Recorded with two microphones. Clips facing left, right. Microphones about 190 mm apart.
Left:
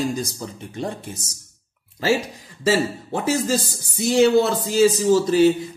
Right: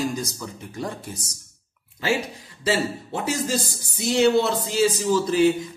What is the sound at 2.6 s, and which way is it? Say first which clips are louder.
A man's voice: left 4 dB; 45° left (ahead or behind).